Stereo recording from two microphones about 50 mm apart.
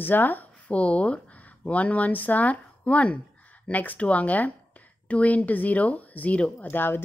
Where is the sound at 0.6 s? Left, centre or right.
Left.